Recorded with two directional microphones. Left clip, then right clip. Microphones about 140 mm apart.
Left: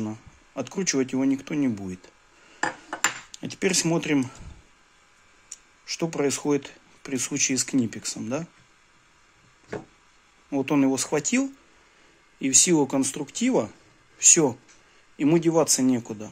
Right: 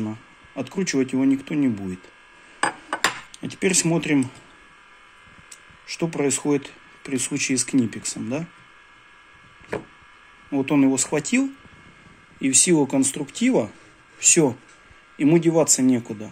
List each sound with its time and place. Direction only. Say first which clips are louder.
0.1 s speech: right 2 dB; 15° left (ahead or behind)
3.3 s speech: right 2 dB; 20° left (ahead or behind)
5.9 s speech: right 2 dB; 15° left (ahead or behind)
10.5 s speech: right 3 dB; 15° left (ahead or behind)